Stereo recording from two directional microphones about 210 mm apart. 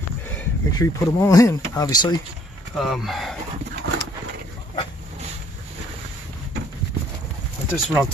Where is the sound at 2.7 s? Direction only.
Centre (ahead or behind).